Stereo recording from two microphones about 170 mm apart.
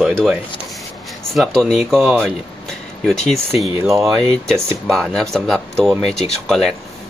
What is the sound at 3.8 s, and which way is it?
Speech, 15° right (ahead or behind).